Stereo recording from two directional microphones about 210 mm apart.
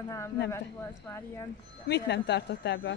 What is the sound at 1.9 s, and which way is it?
A woman's voice, 55° left (ahead or behind).